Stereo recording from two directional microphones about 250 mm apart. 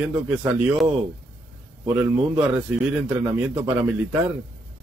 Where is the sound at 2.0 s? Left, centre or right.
Centre.